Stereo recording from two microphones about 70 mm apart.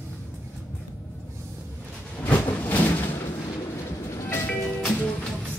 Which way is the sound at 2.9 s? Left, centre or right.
Left.